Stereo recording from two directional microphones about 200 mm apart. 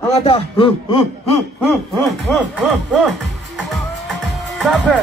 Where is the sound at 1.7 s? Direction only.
5° left (ahead or behind).